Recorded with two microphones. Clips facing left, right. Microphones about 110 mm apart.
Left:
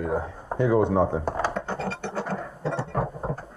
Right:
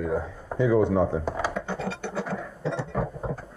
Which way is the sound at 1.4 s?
Centre (ahead or behind).